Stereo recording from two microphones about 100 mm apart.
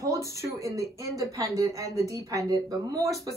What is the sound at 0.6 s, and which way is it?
A woman's voice, 30° right (ahead or behind).